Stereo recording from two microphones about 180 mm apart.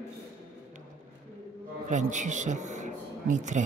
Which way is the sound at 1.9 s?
40° right (ahead or behind).